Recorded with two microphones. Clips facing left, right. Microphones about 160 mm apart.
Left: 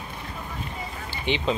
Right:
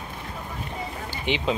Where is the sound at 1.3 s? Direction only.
5° right (ahead or behind).